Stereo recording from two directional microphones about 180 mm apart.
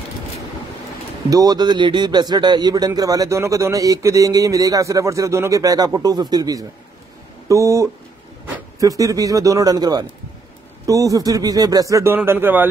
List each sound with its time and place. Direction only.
1.3 s a man's voice: 20° right (ahead or behind)